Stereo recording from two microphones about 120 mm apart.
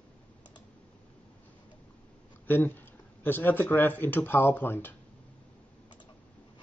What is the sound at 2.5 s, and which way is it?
Speech, 15° left (ahead or behind).